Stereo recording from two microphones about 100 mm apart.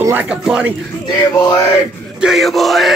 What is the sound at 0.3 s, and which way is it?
Speech, 10° right (ahead or behind).